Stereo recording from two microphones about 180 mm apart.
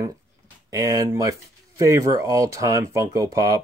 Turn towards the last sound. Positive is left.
turn(degrees=-20)  # may be behind; listen again after turning